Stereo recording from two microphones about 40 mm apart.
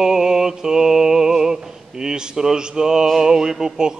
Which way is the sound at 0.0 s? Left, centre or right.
Centre.